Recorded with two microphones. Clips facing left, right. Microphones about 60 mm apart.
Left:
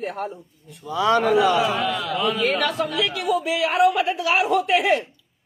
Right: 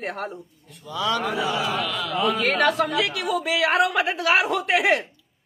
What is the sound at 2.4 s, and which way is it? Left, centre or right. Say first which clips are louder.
A woman's voice: right 1 dB; right.